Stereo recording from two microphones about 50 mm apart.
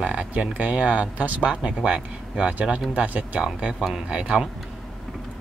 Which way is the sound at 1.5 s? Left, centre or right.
Centre.